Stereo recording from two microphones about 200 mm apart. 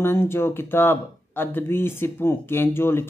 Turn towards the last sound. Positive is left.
turn(degrees=10)  # may be behind; listen again after turning